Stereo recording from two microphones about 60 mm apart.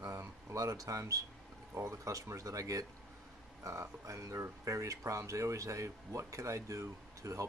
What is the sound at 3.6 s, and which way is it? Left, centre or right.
Speech, right.